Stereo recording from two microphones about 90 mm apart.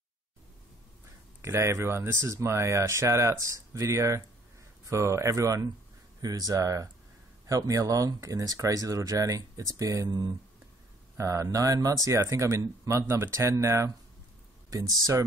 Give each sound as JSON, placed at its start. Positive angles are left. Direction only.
{"t": 1.4, "sound": "speech", "side_deg": -30}
{"t": 11.1, "sound": "speech", "side_deg": -35}